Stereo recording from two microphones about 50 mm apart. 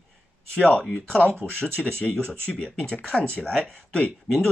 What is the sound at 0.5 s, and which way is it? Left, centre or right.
Speech, left.